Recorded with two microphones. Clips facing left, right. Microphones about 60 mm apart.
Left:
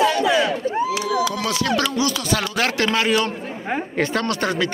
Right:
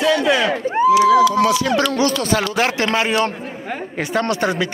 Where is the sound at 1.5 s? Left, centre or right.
Centre.